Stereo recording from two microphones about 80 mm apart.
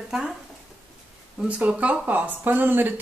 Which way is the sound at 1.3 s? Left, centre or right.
Centre.